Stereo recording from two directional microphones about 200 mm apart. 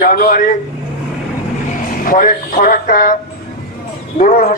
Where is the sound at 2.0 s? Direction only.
45° left (ahead or behind).